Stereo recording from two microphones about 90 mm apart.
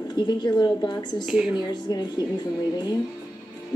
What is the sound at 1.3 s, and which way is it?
Speech, 10° right (ahead or behind).